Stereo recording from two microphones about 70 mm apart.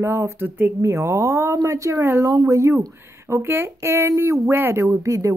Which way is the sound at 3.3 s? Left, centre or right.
Right.